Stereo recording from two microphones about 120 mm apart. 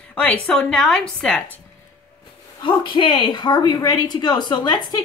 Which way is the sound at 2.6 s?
40° left (ahead or behind).